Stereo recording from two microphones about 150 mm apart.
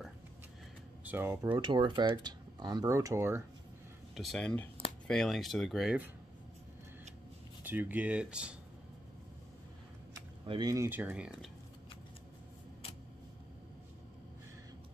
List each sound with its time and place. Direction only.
1.0 s speech: 15° right (ahead or behind)
1.5 s speech: 30° right (ahead or behind)
4.1 s speech: centre (ahead or behind)
7.6 s speech: 10° right (ahead or behind)
10.4 s speech: 35° right (ahead or behind)
10.7 s speech: 15° right (ahead or behind)